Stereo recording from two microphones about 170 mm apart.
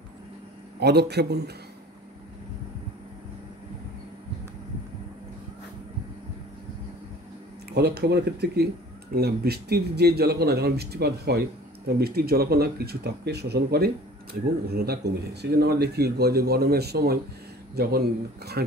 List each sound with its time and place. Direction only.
0.7 s speech: 75° right (ahead or behind)
7.7 s speech: 70° right (ahead or behind)